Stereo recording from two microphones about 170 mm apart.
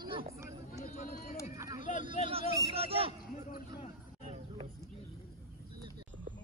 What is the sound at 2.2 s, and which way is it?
Speech, 35° right (ahead or behind).